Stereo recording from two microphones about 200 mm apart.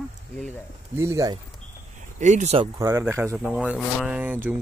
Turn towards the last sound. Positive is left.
turn(degrees=-10)  # may be behind; listen again after turning